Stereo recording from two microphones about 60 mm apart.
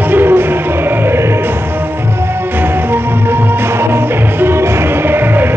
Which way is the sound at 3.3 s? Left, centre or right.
Right.